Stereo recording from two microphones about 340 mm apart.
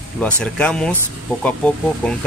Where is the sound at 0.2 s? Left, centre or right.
Centre.